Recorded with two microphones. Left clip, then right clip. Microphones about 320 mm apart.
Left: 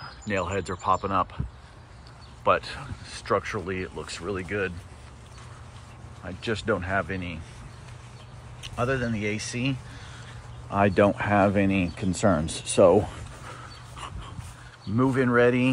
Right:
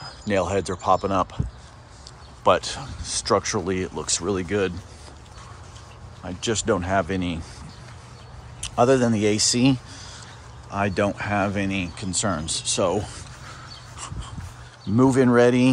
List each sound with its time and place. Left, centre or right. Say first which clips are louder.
0.0 s speech: right 5 dB; centre
2.4 s speech: right 4 dB; centre
6.2 s speech: right 4 dB; centre
8.5 s speech: right 9 dB; centre
10.7 s speech: left 2 dB; centre
13.9 s dog: right 1 dB; centre
15.0 s speech: right 4 dB; centre